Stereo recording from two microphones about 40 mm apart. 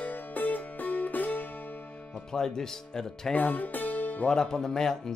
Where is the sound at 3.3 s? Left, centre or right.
Left.